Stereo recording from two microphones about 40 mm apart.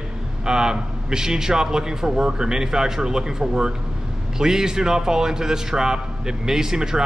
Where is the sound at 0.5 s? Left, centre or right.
Centre.